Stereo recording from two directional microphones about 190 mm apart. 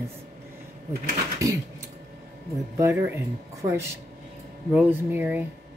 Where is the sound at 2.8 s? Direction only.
15° right (ahead or behind).